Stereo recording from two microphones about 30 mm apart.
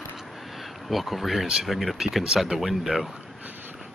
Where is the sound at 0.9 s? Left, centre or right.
Centre.